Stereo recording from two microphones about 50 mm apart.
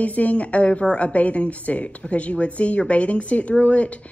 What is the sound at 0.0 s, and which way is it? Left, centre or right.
A woman's voice, left.